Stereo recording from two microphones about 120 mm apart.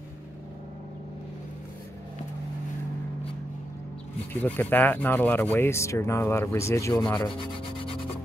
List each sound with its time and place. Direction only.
4.3 s speech: 15° left (ahead or behind)